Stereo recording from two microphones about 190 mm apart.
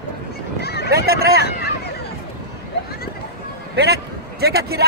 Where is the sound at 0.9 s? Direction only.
55° right (ahead or behind).